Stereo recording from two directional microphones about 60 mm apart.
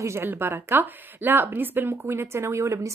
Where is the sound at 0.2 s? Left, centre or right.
Right.